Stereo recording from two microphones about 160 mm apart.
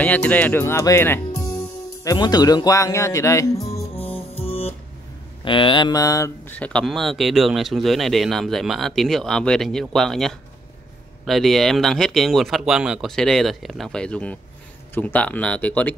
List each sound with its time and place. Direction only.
0.0 s speech: 10° left (ahead or behind)
3.7 s music: 10° left (ahead or behind)
4.4 s music: 40° left (ahead or behind)
5.4 s speech: 30° left (ahead or behind)
6.5 s speech: 5° left (ahead or behind)